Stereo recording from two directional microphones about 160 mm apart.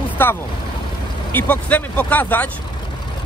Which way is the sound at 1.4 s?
10° left (ahead or behind).